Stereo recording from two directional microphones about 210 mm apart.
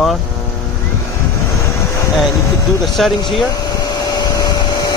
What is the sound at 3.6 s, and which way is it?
Vacuum cleaner, 20° left (ahead or behind).